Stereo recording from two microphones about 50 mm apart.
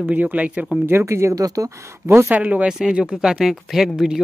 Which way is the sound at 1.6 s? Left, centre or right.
Right.